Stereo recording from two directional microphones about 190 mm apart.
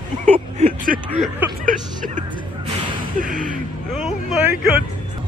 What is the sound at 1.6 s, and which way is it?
Speech, 45° right (ahead or behind).